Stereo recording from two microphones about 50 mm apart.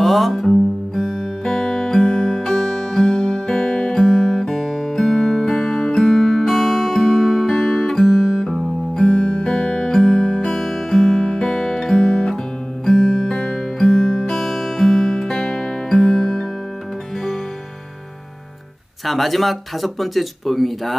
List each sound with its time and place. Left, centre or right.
0.0 s music: centre
9.0 s music: centre
10.6 s guitar: centre
11.1 s music: centre
19.0 s speech: centre